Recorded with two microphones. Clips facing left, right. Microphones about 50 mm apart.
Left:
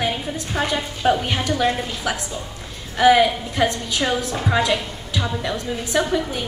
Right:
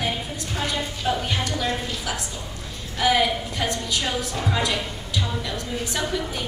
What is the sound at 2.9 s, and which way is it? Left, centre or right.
A woman's voice, left.